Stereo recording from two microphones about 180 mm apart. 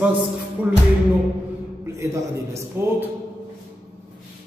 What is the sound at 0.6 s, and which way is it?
Speech, 10° right (ahead or behind).